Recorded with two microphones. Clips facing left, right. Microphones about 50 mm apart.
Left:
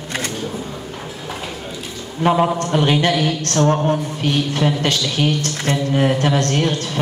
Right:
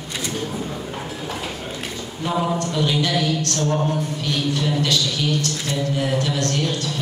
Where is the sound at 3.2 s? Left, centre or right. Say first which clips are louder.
Left 5 dB; left.